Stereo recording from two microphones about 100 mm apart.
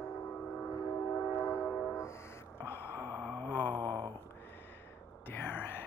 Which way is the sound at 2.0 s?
25° left (ahead or behind).